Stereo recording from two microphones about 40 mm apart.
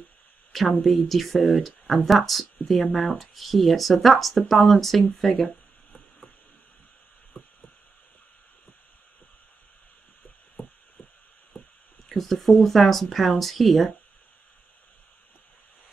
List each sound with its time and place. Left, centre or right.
0.5 s speech: centre
7.3 s a sound: left
12.1 s speech: centre